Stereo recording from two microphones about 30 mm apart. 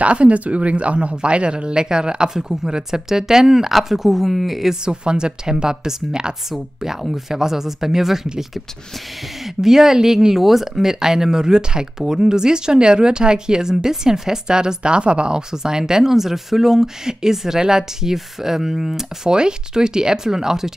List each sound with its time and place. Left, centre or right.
0.0 s speech: right; by 4.7 s centre
4.8 s speech: right; by 8.3 s centre
9.4 s speech: centre
16.0 s speech: centre
19.2 s speech: right